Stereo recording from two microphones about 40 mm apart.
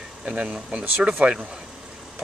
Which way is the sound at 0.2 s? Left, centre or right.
Right.